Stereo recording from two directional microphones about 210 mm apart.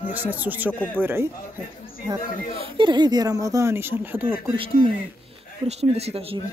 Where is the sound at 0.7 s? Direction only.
5° left (ahead or behind).